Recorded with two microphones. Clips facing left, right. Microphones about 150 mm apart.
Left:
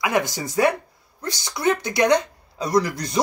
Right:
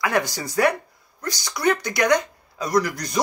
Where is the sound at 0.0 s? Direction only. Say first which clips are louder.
Left 1 dB; 20° left (ahead or behind).